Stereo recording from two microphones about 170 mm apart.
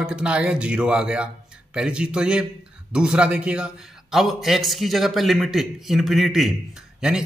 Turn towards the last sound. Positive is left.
turn(degrees=-5)  # may be behind; listen again after turning